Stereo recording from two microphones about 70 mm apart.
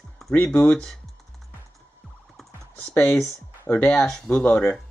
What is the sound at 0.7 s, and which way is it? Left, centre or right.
Speech, centre.